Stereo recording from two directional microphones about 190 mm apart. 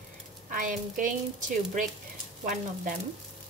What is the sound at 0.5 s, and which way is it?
A woman's voice, 45° right (ahead or behind).